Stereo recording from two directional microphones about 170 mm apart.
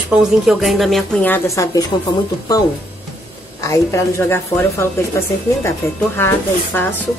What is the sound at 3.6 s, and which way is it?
A woman's voice, 15° left (ahead or behind).